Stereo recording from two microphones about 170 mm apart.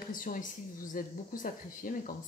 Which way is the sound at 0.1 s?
55° left (ahead or behind).